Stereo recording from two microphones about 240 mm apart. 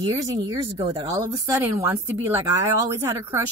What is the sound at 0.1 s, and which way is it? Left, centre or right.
A woman's voice, centre.